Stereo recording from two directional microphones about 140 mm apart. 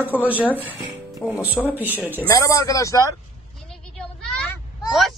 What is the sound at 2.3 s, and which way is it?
Speech, 25° left (ahead or behind).